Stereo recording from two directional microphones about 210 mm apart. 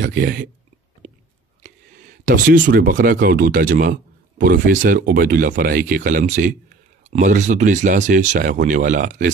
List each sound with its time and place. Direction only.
0.2 s speech: 50° right (ahead or behind)
1.0 s chewing: 30° right (ahead or behind)
2.2 s speech: 40° right (ahead or behind)